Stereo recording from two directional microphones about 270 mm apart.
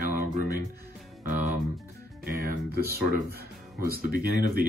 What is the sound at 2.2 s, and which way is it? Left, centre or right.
Speech, right.